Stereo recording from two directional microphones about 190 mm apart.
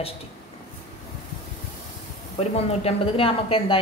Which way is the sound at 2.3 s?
30° left (ahead or behind).